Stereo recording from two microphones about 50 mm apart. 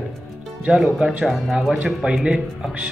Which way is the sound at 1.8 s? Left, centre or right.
Centre.